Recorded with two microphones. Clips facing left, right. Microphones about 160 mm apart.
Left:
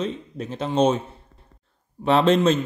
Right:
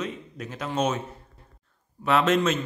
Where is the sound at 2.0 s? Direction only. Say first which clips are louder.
Left 4 dB; 30° left (ahead or behind).